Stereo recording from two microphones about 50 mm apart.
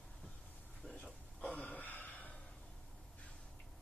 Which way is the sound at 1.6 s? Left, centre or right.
Left.